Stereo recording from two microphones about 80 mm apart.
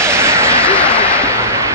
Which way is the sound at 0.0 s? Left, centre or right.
Right.